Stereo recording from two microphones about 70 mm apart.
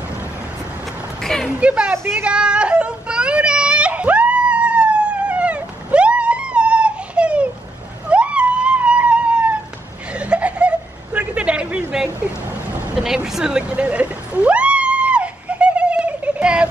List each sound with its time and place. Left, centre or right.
1.2 s speech: centre
1.6 s speech: centre
2.2 s a sound: centre